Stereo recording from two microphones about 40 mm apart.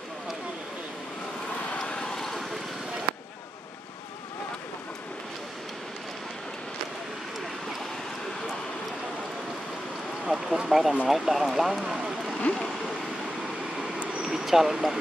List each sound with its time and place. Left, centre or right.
1.9 s vehicle: centre
2.1 s vehicle: centre
10.2 s a sound: centre
10.7 s speech: centre
12.4 s speech: left
14.4 s speech: centre